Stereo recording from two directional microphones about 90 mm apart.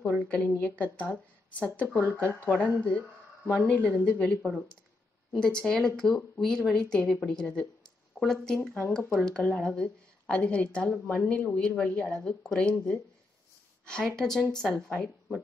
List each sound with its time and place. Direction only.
0.3 s a woman's voice: 15° left (ahead or behind)